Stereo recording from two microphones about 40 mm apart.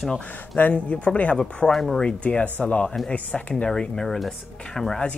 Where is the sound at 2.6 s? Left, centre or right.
Left.